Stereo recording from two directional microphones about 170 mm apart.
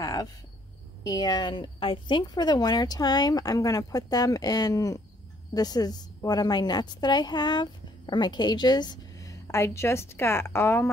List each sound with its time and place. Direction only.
0.0 s cricket: 20° left (ahead or behind)
1.0 s a woman's voice: 25° left (ahead or behind)